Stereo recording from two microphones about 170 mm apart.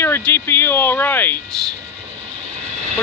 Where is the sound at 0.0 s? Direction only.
10° left (ahead or behind).